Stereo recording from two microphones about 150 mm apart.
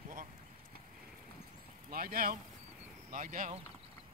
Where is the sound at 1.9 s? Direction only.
80° right.